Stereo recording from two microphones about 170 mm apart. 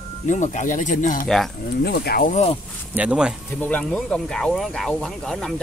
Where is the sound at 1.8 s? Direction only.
70° left (ahead or behind); by 2.5 s 45° left (ahead or behind).